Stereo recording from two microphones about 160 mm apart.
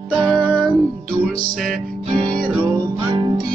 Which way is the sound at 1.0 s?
60° right (ahead or behind).